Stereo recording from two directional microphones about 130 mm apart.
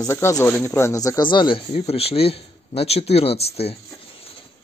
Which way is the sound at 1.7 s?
55° left (ahead or behind).